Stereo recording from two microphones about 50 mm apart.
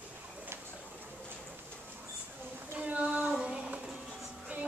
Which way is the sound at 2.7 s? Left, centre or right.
Right.